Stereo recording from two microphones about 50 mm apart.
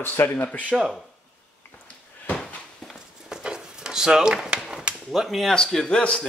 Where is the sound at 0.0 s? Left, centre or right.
Left.